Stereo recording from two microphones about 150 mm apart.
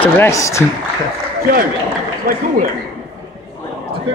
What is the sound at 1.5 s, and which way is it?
Speech, 90° right.